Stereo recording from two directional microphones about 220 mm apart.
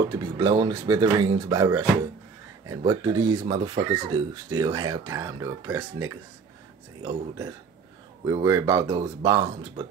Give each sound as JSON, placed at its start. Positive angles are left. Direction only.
{"t": 0.2, "sound": "speech", "side_deg": -15}